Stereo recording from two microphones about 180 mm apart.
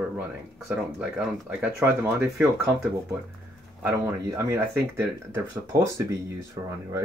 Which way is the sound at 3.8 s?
15° right (ahead or behind).